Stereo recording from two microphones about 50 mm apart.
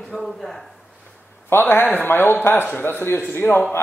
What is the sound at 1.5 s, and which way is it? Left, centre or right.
Speech, left.